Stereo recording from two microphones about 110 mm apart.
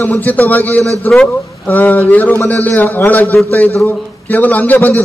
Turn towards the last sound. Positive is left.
turn(degrees=15)  # may be behind; listen again after turning